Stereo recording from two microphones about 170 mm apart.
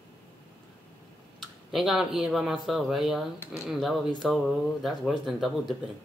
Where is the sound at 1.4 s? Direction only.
Centre (ahead or behind).